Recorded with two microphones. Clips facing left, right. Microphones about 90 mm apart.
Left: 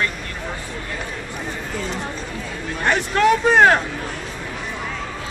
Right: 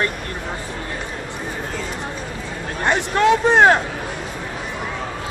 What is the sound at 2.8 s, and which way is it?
Speech, 20° right (ahead or behind).